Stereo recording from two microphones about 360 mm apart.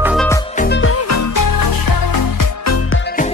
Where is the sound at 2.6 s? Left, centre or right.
Left.